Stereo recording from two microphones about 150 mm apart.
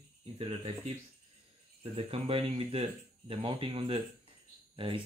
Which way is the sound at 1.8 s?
40° right (ahead or behind).